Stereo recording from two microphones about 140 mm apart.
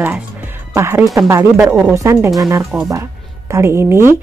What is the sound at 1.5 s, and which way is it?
Speech, 10° right (ahead or behind).